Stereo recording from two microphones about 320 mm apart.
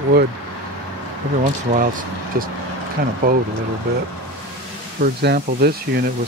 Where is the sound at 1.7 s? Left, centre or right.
Right.